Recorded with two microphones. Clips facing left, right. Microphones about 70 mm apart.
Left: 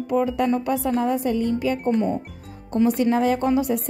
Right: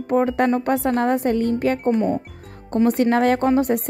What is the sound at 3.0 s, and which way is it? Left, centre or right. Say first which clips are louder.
Speech: right 3 dB; right.